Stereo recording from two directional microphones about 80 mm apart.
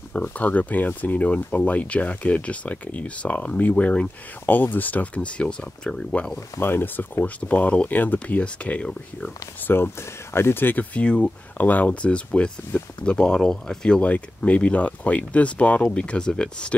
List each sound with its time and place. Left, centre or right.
0.2 s speech: centre
6.6 s speech: left
9.7 s speech: left; by 16.7 s centre